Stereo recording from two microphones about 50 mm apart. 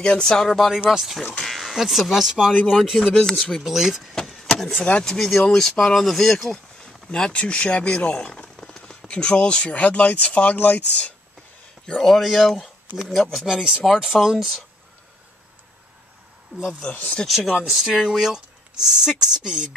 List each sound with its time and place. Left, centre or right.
0.0 s speech: centre
0.5 s speech: centre
3.1 s speech: centre
3.6 s speech: centre
4.3 s vehicle: centre
5.0 s speech: centre
7.1 s speech: centre
8.0 s a sound: left
9.0 s speech: left
11.8 s speech: centre
13.8 s speech: centre
16.5 s a man's voice: right
16.9 s speech: left
17.3 s speech: centre